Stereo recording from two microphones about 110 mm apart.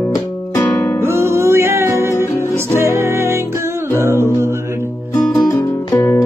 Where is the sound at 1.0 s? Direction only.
25° right (ahead or behind).